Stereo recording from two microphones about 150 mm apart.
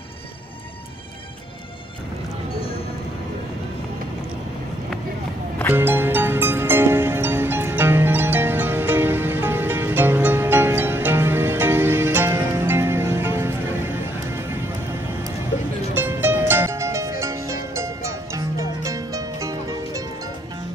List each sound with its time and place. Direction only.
5.8 s music: 15° right (ahead or behind)
15.9 s music: 15° right (ahead or behind)